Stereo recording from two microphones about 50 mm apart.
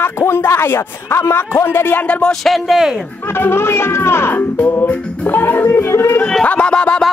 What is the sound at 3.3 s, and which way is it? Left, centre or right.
A man's voice, left.